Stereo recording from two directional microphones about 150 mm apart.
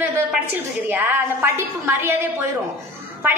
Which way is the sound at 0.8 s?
15° right (ahead or behind).